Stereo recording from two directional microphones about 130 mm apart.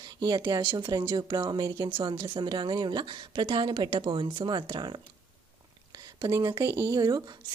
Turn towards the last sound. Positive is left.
turn(degrees=-30)  # may be behind; listen again after turning